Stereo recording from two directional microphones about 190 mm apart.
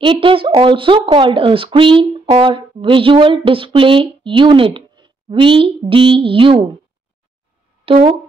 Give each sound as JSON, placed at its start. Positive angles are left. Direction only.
{"t": 0.0, "sound": "speech", "side_deg": -25}
{"t": 7.8, "sound": "speech", "side_deg": -30}